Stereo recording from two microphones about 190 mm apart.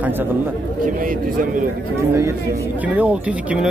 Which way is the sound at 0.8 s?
45° right (ahead or behind).